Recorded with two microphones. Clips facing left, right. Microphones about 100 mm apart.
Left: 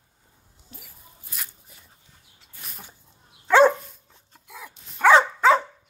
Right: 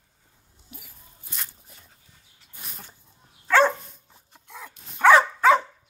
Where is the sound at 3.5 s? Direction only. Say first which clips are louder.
Left 3 dB; 15° left (ahead or behind).